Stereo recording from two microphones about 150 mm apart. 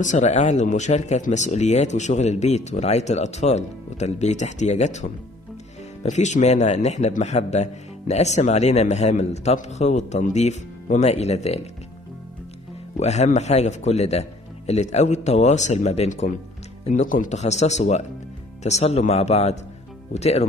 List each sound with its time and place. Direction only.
0.0 s a man's voice: 50° left (ahead or behind)
12.9 s a man's voice: 50° left (ahead or behind)